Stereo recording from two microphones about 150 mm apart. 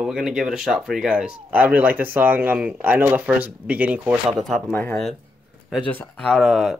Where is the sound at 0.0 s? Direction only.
5° right (ahead or behind).